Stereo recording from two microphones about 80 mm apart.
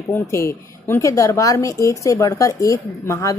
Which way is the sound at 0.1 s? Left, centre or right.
Left.